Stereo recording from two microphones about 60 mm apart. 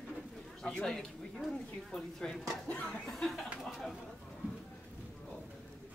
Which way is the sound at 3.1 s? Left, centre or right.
Centre.